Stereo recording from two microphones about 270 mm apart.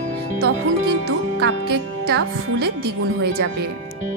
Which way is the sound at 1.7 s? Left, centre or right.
Right.